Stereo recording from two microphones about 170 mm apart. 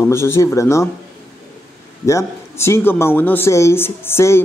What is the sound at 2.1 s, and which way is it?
A man's voice, 15° left (ahead or behind).